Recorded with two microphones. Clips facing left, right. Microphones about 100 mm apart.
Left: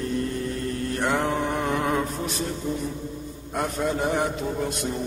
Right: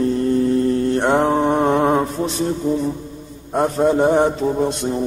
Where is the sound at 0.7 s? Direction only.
30° right (ahead or behind).